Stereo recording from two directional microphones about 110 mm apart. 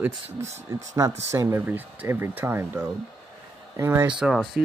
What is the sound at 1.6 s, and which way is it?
Speech, 15° right (ahead or behind).